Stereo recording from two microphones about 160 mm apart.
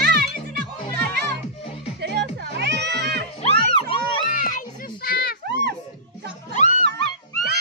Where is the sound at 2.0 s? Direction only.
90° right.